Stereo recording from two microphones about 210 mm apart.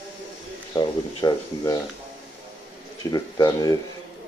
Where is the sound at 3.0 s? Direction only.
20° left (ahead or behind).